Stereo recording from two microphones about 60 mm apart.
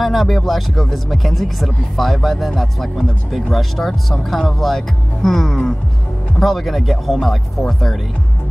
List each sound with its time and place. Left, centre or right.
0.0 s speech: centre